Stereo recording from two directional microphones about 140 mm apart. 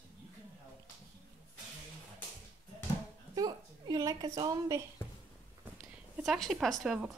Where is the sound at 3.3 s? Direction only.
25° right (ahead or behind).